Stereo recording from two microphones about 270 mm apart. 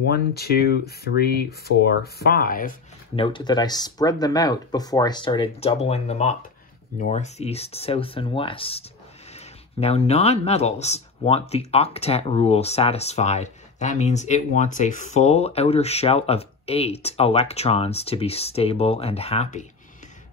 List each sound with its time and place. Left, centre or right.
0.1 s speech: left
3.2 s speech: centre